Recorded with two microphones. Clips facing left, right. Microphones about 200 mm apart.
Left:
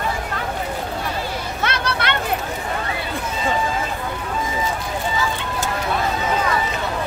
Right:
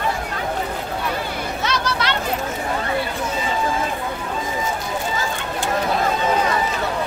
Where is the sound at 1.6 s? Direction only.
60° left (ahead or behind).